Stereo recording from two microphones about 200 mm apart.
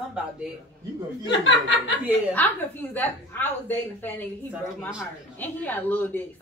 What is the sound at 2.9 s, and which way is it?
A woman's voice, 10° left (ahead or behind).